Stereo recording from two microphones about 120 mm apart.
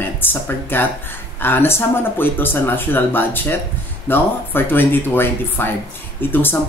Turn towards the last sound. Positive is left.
turn(degrees=15)  # may be behind; listen again after turning